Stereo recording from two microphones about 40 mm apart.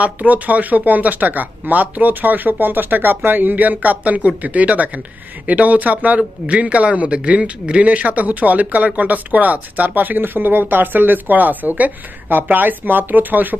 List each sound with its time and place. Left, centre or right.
0.0 s speech: right